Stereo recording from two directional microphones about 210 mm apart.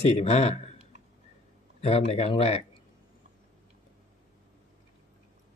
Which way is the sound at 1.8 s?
30° left (ahead or behind).